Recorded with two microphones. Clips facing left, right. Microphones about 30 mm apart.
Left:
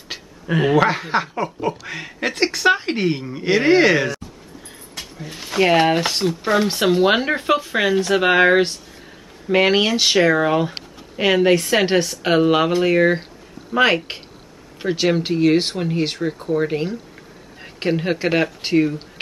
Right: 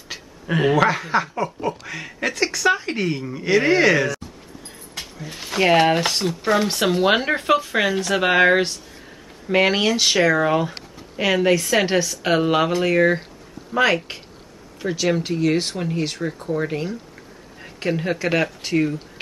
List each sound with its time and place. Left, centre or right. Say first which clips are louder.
0.5 s speech: left 1 dB; centre
0.8 s speech: even; centre
2.2 s speech: left 2 dB; left
5.1 s speech: left 3 dB; centre
18.6 s speech: left 4 dB; left